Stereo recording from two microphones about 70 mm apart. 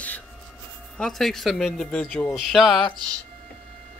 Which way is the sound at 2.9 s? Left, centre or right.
Right.